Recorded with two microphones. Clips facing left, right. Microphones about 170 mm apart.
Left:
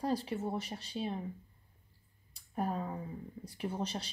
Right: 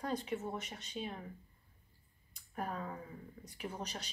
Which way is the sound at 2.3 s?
30° left (ahead or behind).